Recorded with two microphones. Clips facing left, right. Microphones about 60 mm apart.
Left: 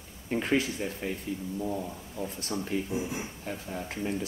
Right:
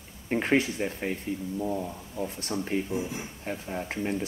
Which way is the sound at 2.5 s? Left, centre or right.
Right.